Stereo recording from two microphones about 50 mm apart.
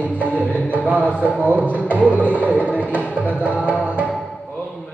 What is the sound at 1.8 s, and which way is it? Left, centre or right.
Music, right.